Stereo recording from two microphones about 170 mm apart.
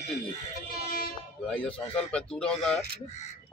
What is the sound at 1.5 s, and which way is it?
A man's voice, 5° left (ahead or behind).